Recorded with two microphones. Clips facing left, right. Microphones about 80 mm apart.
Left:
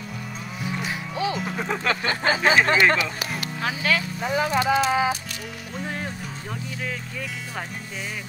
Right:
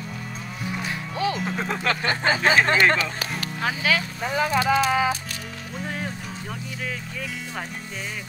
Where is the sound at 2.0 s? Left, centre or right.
Right.